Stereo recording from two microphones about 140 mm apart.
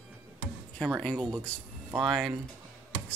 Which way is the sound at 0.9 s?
5° left (ahead or behind).